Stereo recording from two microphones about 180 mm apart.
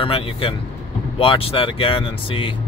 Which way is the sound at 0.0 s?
30° left (ahead or behind).